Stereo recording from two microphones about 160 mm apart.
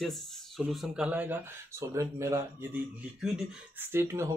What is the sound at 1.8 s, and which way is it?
Speech, 20° right (ahead or behind).